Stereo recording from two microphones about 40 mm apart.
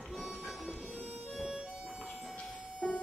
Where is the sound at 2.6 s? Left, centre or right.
Right.